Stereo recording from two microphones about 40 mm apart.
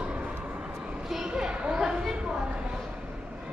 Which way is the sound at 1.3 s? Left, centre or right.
Right.